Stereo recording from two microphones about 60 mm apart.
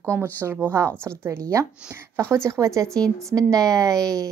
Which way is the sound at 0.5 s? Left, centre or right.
Right.